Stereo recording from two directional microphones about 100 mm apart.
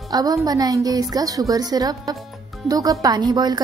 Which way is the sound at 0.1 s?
35° right (ahead or behind).